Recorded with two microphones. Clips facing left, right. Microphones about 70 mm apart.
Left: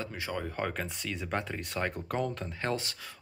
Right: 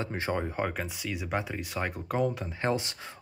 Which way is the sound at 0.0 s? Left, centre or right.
Right.